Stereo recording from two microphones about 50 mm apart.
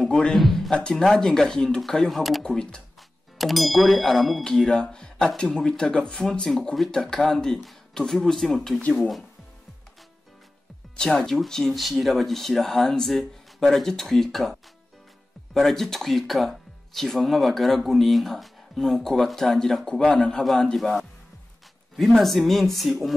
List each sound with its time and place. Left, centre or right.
0.3 s speech: centre
2.4 s speech: centre
3.3 s speech: centre
4.5 s speech: centre
11.0 s speech: centre